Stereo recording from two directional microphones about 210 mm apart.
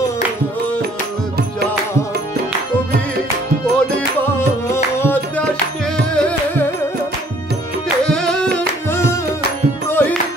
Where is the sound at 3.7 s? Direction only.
10° left (ahead or behind).